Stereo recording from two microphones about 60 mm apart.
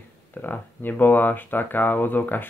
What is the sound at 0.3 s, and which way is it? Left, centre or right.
Speech, left.